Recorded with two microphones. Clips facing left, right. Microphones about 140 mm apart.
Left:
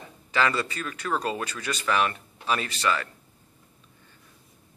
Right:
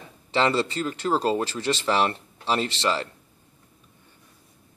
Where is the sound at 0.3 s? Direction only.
25° right (ahead or behind).